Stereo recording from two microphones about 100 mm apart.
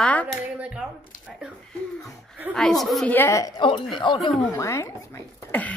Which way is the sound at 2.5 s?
5° left (ahead or behind).